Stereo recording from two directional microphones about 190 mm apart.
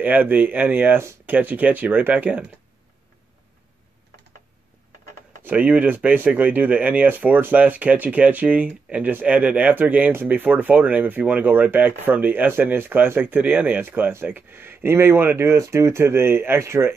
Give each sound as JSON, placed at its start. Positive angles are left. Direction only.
{"t": 0.0, "sound": "speech", "side_deg": -10}
{"t": 5.4, "sound": "speech", "side_deg": -10}